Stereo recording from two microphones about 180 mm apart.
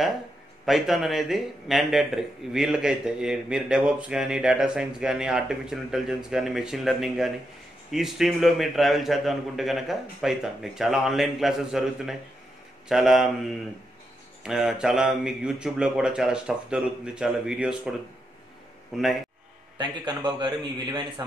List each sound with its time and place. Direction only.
0.7 s speech: centre (ahead or behind)
14.4 s speech: centre (ahead or behind)
18.9 s speech: centre (ahead or behind)
19.8 s a man's voice: 25° right (ahead or behind)